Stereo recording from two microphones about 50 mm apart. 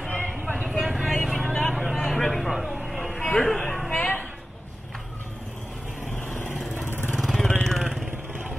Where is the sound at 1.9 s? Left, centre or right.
Centre.